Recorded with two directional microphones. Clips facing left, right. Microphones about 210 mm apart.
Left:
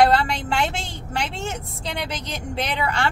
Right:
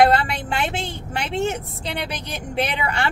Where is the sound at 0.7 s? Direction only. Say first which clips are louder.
Right 1 dB; 60° right (ahead or behind).